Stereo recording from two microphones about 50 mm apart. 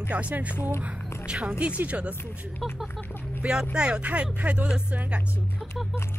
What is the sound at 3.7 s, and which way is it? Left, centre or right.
Speech, centre.